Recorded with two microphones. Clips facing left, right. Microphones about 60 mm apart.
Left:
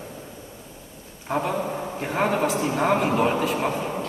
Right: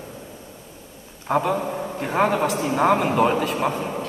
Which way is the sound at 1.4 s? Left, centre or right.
Centre.